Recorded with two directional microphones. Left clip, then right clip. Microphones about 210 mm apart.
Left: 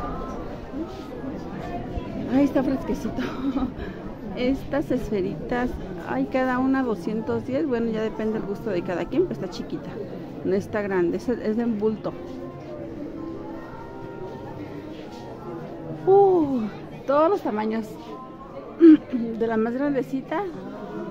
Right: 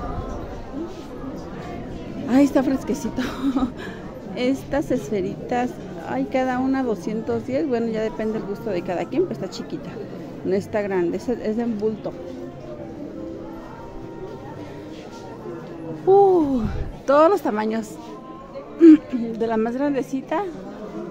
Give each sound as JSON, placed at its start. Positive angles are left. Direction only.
{"t": 2.3, "sound": "a woman's voice", "side_deg": -20}
{"t": 16.1, "sound": "a sound", "side_deg": -15}
{"t": 18.8, "sound": "a woman's voice", "side_deg": -10}